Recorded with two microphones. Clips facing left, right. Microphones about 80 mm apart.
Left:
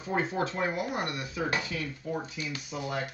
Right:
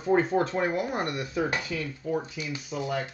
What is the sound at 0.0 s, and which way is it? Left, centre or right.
Speech, right.